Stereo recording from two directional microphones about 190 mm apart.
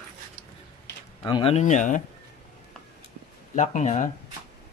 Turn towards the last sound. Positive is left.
turn(degrees=40)  # may be behind; listen again after turning